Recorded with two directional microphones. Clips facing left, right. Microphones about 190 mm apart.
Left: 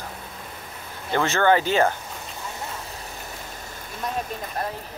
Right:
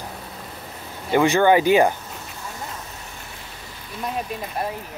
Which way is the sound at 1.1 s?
15° right (ahead or behind).